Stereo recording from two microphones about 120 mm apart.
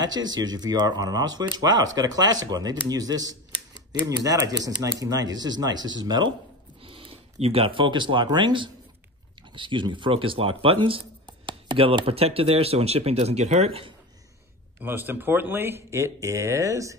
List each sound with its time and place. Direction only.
0.0 s a man's voice: 35° right (ahead or behind); by 13.9 s 55° right (ahead or behind)
14.8 s speech: 20° right (ahead or behind)